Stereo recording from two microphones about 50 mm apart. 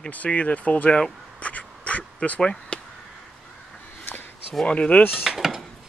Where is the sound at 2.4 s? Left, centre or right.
Centre.